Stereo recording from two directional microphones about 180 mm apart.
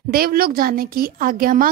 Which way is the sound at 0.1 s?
55° right (ahead or behind).